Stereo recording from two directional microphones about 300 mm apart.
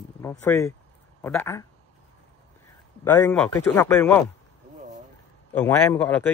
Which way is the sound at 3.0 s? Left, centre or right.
Centre.